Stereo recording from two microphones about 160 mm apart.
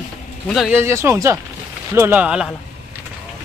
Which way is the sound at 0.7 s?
15° right (ahead or behind).